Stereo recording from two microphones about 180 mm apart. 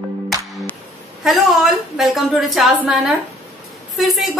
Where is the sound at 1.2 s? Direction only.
Centre (ahead or behind).